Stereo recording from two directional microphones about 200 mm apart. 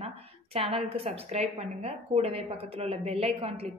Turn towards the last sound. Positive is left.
turn(degrees=-30)  # may be behind; listen again after turning